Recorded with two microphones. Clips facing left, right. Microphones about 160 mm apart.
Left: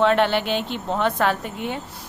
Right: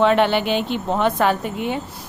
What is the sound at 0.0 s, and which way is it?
A woman's voice, 5° right (ahead or behind).